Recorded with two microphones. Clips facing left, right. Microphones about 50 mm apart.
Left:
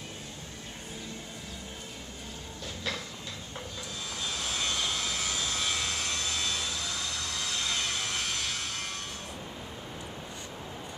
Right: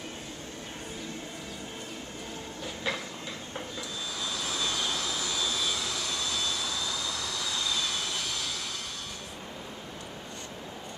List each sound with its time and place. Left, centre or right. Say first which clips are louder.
2.6 s a sound: right 3 dB; centre
4.6 s jet engine: even; left
7.4 s vehicle: right 1 dB; left